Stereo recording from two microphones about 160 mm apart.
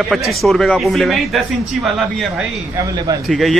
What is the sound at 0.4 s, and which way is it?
Speech, centre (ahead or behind).